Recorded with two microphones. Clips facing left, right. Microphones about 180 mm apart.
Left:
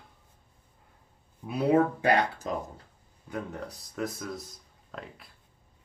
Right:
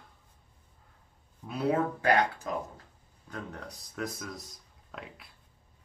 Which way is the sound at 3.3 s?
5° left (ahead or behind).